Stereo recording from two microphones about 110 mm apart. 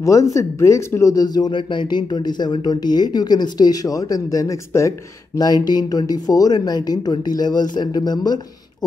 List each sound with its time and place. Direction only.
0.0 s speech: 30° left (ahead or behind)